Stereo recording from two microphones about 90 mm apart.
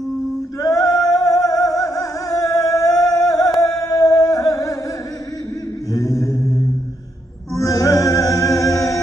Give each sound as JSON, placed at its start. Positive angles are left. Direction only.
{"t": 0.6, "sound": "music", "side_deg": 40}
{"t": 5.9, "sound": "mantra", "side_deg": 35}
{"t": 7.5, "sound": "music", "side_deg": 40}